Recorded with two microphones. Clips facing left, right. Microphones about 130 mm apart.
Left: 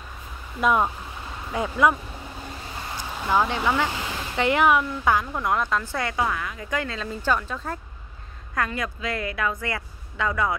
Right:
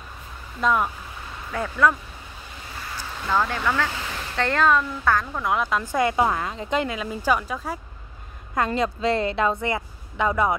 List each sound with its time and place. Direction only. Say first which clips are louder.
1.5 s speech: even; 15° left (ahead or behind)
3.0 s speech: left 1 dB; 15° left (ahead or behind)
5.4 s a woman's voice: right 1 dB; 5° right (ahead or behind)
8.5 s a woman's voice: right 5 dB; 25° right (ahead or behind)